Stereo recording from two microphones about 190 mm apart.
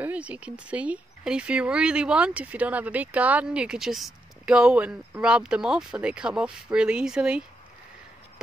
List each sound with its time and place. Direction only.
0.0 s speech: 5° right (ahead or behind)